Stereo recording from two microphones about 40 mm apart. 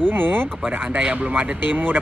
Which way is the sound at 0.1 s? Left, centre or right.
Right.